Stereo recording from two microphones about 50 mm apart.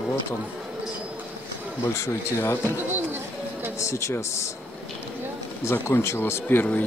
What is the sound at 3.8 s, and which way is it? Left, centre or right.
Speech, left.